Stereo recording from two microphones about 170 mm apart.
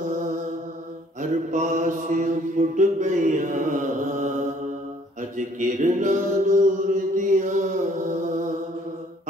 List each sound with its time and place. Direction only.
1.5 s mantra: 50° right (ahead or behind)